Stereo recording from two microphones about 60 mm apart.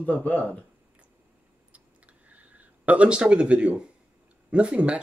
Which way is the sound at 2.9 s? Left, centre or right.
Centre.